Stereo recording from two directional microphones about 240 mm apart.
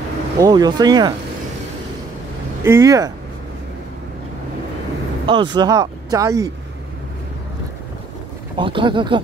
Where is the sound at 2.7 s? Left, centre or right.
Centre.